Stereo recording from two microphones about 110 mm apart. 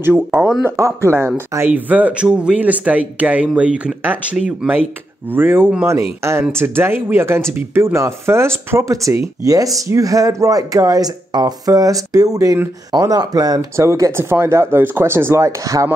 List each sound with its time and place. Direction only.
0.0 s speech: 20° right (ahead or behind)
1.7 s speech: 15° right (ahead or behind); by 15.9 s 30° right (ahead or behind)